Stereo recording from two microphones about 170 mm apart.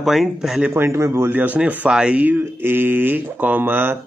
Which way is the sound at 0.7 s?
15° right (ahead or behind).